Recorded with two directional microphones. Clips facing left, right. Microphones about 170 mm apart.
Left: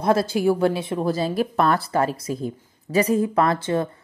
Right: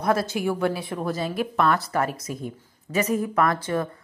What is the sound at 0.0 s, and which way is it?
A woman's voice, 30° left (ahead or behind).